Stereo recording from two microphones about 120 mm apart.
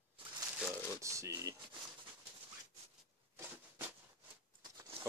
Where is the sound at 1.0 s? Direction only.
25° right (ahead or behind).